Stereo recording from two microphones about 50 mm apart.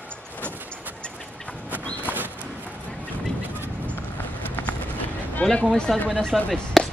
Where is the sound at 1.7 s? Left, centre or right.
Right.